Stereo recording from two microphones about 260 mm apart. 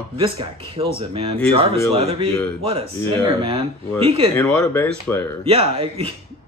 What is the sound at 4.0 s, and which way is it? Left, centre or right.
Speech, right.